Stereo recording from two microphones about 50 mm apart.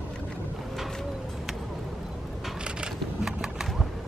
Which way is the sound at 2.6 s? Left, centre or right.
Centre.